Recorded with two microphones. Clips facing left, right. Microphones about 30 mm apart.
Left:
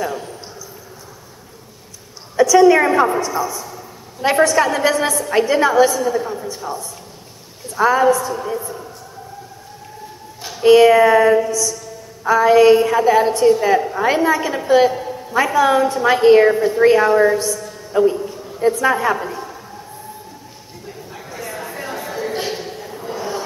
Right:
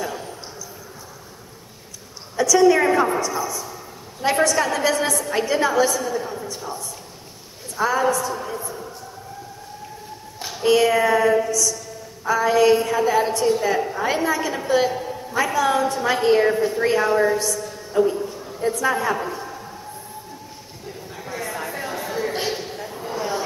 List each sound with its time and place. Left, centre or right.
0.0 s a man's voice: centre
2.3 s a woman's voice: centre
10.6 s a woman's voice: centre
21.5 s chatter: centre
22.5 s a sound: centre